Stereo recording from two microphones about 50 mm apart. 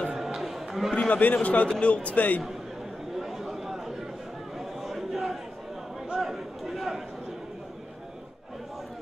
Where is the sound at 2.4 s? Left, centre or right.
Centre.